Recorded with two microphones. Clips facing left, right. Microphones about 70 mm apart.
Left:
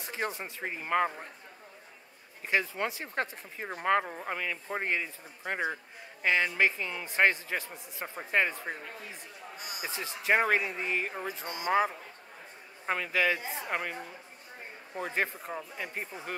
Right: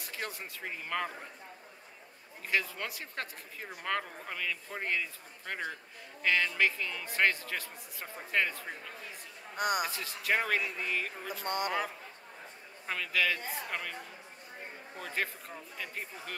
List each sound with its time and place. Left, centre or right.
0.0 s speech: left
2.4 s speech: left
9.6 s speech: right
9.8 s speech: left
11.4 s speech: right
12.8 s speech: left
15.0 s speech: left